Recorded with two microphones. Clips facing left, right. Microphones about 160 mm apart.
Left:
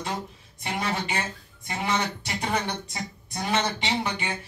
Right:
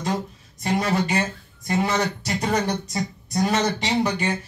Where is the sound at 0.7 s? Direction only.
40° right (ahead or behind).